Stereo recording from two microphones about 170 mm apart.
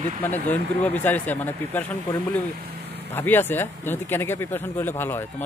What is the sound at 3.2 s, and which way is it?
Speech, 10° left (ahead or behind).